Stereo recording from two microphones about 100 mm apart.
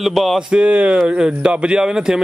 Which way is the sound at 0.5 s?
10° right (ahead or behind).